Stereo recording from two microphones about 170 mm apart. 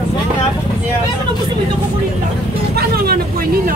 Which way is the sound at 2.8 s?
65° right (ahead or behind).